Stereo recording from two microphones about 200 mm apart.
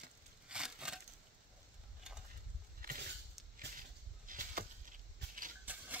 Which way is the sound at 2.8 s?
45° right (ahead or behind).